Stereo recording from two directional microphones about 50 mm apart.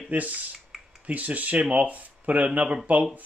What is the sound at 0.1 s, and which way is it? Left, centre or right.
Speech, right.